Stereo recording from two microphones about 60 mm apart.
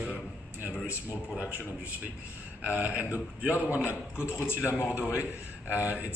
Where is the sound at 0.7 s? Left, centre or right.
Left.